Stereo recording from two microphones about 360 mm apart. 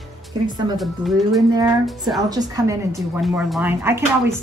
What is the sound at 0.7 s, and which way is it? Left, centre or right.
Speech, centre.